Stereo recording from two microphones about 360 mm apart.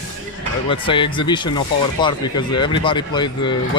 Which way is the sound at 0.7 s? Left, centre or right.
Centre.